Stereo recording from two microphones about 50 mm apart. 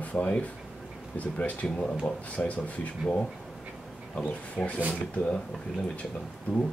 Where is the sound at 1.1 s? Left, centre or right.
Left.